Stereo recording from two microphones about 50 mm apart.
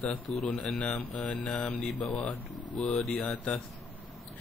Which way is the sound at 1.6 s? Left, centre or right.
Left.